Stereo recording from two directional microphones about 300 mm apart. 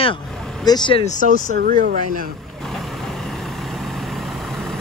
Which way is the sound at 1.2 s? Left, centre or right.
Right.